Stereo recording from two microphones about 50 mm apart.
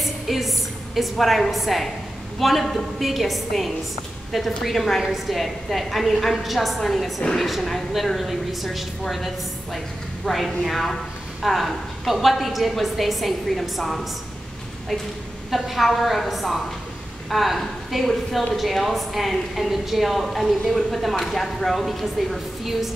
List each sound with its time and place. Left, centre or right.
0.0 s a woman's voice: centre
15.5 s a woman's voice: centre